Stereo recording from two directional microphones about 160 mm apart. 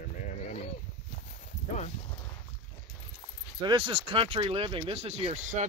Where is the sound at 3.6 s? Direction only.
30° right (ahead or behind).